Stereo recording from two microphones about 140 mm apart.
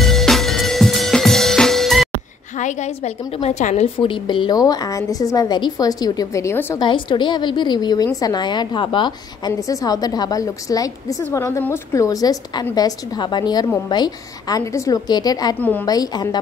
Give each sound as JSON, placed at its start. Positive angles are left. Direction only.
{"t": 0.0, "sound": "music", "side_deg": 0}
{"t": 2.6, "sound": "a woman's voice", "side_deg": 55}
{"t": 4.0, "sound": "a woman's voice", "side_deg": 35}
{"t": 6.8, "sound": "a woman's voice", "side_deg": 35}